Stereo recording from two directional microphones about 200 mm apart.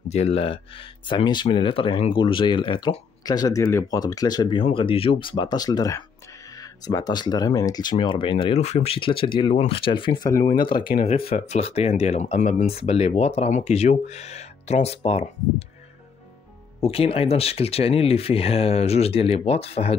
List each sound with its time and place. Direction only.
0.1 s speech: 30° left (ahead or behind)
16.8 s speech: 30° left (ahead or behind)